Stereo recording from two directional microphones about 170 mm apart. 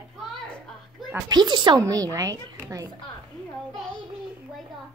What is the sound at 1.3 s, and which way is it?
Speech, 25° right (ahead or behind).